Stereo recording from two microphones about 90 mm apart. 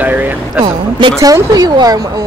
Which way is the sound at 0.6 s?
60° right (ahead or behind).